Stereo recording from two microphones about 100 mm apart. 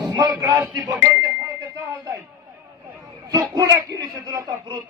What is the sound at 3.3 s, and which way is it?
Speech, 35° right (ahead or behind).